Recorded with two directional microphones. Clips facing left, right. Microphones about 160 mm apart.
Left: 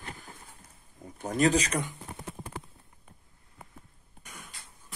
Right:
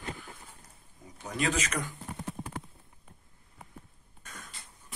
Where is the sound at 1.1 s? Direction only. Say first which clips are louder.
Left 6 dB; 45° left (ahead or behind).